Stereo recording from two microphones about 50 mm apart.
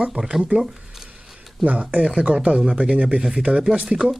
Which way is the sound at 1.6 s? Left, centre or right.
Right.